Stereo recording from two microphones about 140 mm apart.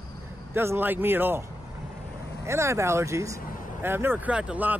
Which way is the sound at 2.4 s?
20° right (ahead or behind).